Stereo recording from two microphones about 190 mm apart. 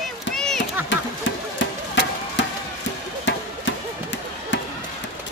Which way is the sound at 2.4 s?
70° left (ahead or behind).